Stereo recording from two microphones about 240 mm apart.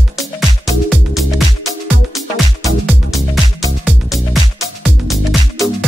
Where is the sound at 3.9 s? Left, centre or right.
Centre.